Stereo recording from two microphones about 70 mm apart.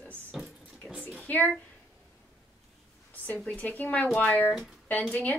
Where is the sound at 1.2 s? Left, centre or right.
Left.